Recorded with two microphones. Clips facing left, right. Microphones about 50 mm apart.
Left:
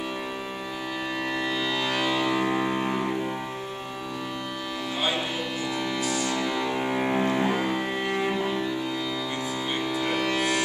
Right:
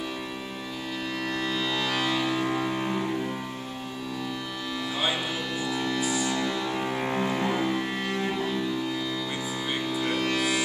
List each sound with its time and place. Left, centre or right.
1.3 s music: centre
5.7 s music: centre
5.9 s music: centre
6.3 s music: centre
9.8 s music: centre